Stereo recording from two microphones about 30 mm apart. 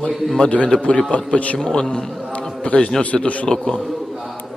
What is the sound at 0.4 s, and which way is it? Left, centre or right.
Speech, left.